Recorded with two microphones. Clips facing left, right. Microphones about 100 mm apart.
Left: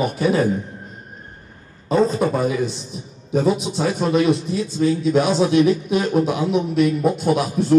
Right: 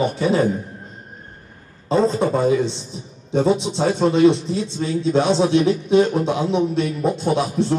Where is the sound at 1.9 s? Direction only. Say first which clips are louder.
Even; 25° right (ahead or behind).